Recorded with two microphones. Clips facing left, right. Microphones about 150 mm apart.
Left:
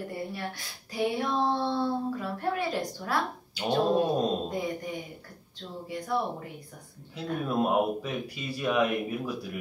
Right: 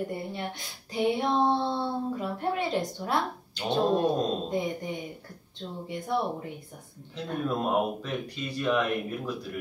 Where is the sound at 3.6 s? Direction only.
10° left (ahead or behind).